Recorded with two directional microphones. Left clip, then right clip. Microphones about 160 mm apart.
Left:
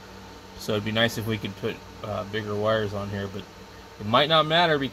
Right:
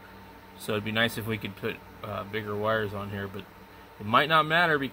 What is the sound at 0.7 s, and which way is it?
Speech, centre (ahead or behind).